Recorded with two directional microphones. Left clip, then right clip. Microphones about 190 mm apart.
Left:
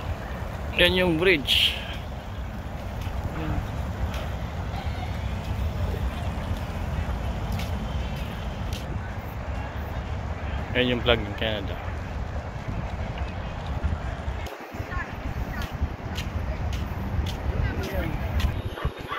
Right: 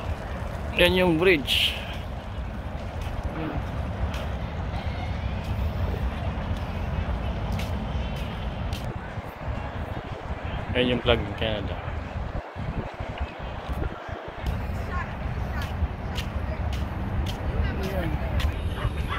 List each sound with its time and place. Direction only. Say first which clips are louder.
0.7 s speech: even; 10° right (ahead or behind)
10.7 s speech: even; centre (ahead or behind)